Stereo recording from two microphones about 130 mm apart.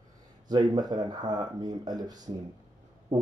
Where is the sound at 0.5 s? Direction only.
30° right (ahead or behind).